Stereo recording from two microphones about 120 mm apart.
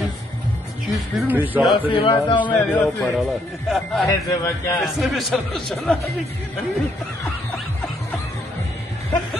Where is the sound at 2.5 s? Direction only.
15° left (ahead or behind).